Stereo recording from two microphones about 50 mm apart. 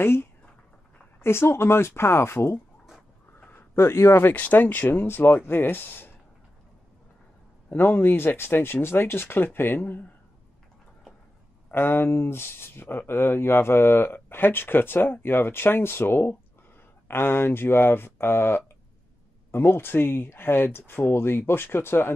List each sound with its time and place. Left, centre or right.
0.0 s speech: left
3.7 s speech: left
4.4 s speech: left
7.7 s speech: left
11.7 s speech: left